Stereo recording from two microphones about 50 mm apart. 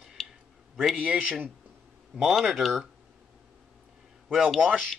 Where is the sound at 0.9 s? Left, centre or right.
Centre.